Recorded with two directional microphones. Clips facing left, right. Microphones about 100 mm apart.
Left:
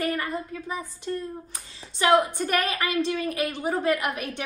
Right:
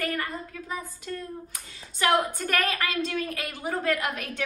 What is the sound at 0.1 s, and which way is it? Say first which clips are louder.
A woman's voice: left 3 dB; 25° left (ahead or behind).